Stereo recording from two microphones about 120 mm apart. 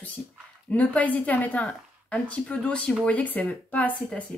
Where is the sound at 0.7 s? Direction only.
10° left (ahead or behind).